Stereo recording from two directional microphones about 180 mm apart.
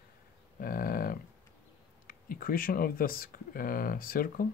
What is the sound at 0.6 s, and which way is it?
Cattle, 55° left (ahead or behind).